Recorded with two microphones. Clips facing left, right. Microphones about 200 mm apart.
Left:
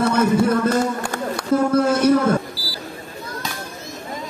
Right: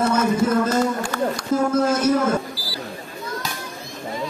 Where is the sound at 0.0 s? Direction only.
60° left (ahead or behind).